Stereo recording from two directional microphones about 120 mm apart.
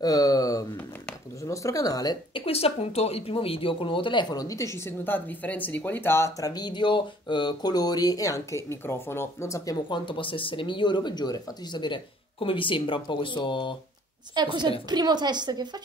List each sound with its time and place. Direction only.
0.0 s speech: 30° left (ahead or behind)
2.3 s speech: 50° left (ahead or behind); by 9.8 s 25° left (ahead or behind)
9.8 s speech: 45° left (ahead or behind)
14.3 s a woman's voice: 40° right (ahead or behind)